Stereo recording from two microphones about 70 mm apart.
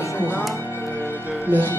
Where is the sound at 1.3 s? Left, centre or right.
Right.